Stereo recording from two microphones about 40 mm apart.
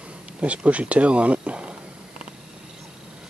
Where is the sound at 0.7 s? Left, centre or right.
Right.